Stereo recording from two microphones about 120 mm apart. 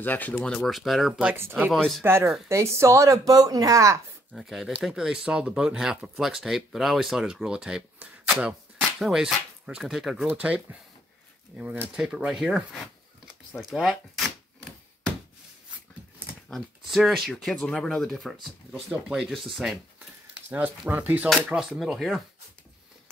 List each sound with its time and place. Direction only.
0.0 s speech: 15° left (ahead or behind)
2.0 s speech: 20° right (ahead or behind)
4.3 s speech: centre (ahead or behind)
10.2 s speech: 10° right (ahead or behind)
16.4 s speech: centre (ahead or behind)
20.4 s speech: 15° right (ahead or behind)